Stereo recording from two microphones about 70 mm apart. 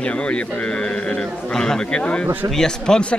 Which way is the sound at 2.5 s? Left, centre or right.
Centre.